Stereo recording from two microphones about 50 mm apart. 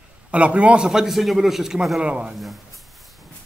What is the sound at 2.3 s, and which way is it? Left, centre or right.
Speech, centre.